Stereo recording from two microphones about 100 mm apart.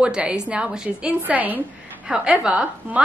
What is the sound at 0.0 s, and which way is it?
Speech, 10° right (ahead or behind).